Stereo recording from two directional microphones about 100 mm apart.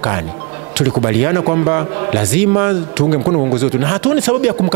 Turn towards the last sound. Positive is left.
turn(degrees=-15)  # may be behind; listen again after turning